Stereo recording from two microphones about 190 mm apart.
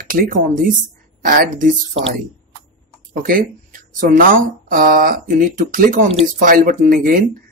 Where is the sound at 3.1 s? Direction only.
45° right (ahead or behind).